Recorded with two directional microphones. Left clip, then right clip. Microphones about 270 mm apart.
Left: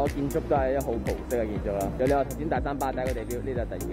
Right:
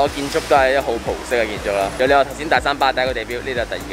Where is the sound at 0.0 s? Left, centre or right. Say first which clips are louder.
Right 9 dB; centre.